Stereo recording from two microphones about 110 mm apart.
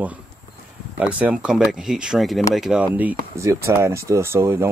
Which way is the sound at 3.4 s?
25° right (ahead or behind).